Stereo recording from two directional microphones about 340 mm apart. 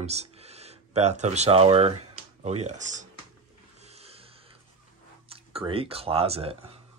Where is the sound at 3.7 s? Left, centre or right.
Centre.